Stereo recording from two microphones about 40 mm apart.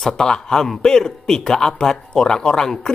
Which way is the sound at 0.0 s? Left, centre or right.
Centre.